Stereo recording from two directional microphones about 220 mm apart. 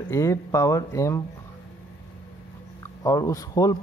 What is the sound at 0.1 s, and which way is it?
Speech, 15° left (ahead or behind).